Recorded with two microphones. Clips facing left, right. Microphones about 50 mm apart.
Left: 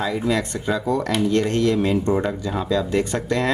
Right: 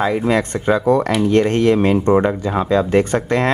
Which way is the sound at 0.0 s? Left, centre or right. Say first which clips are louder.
Right 5 dB; right.